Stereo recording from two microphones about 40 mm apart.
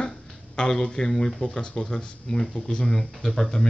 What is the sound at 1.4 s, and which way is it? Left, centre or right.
Speech, left.